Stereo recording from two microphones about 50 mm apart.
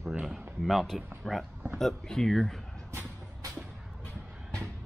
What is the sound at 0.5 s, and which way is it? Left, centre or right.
Speech, centre.